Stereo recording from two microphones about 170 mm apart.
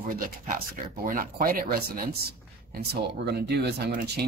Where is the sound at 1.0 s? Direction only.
55° right (ahead or behind).